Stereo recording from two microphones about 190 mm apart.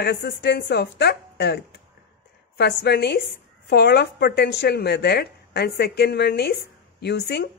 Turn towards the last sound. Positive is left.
turn(degrees=60)  # may be behind; listen again after turning